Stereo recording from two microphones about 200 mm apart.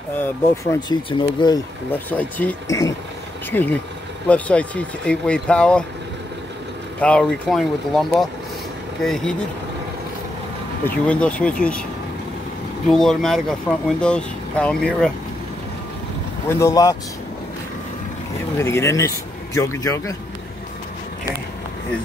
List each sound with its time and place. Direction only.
0.2 s speech: 20° left (ahead or behind)
1.9 s a man's voice: 10° left (ahead or behind)
7.0 s speech: 5° left (ahead or behind)
10.9 s a man's voice: 5° left (ahead or behind)
12.9 s speech: centre (ahead or behind)
16.5 s a man's voice: 15° left (ahead or behind)
18.6 s a man's voice: 15° left (ahead or behind)